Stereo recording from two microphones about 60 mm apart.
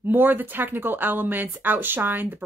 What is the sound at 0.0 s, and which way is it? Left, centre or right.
Speech, right.